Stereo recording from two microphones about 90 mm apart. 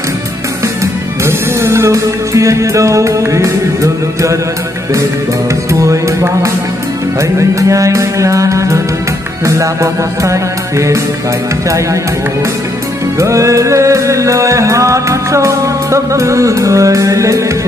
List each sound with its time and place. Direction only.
1.2 s music: 30° right (ahead or behind)
5.7 s music: 35° right (ahead or behind)
13.2 s music: 35° right (ahead or behind)